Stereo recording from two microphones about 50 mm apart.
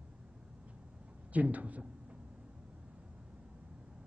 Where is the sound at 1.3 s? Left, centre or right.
Right.